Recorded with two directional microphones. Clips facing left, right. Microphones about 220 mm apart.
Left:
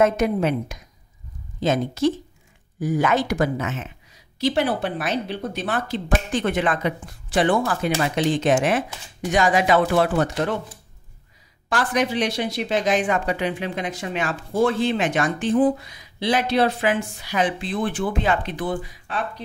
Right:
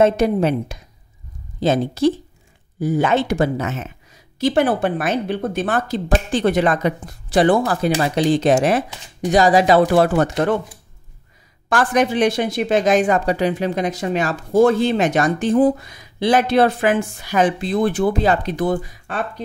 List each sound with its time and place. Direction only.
0.0 s a woman's voice: 35° right (ahead or behind)
4.4 s a woman's voice: 50° right (ahead or behind)
10.1 s speech: 50° right (ahead or behind)
11.7 s speech: 50° right (ahead or behind)